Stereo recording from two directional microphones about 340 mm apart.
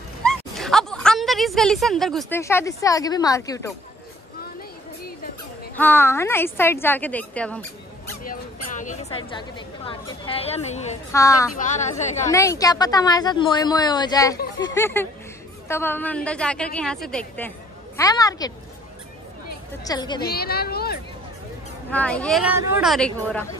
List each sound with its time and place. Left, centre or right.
0.2 s a sound: centre
5.8 s a woman's voice: centre
8.2 s speech: left
12.0 s a woman's voice: centre
12.3 s a woman's voice: centre
19.8 s speech: centre
20.2 s a woman's voice: left
21.9 s a woman's voice: centre